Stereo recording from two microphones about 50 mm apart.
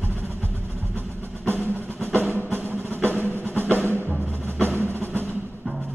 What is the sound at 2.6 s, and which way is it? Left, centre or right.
Music, right.